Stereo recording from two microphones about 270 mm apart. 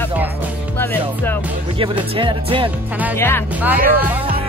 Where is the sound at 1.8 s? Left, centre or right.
Centre.